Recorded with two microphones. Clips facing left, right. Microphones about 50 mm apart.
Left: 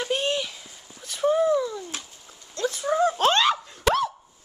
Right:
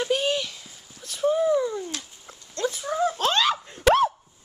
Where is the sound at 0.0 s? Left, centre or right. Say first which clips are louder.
Right 1 dB; centre.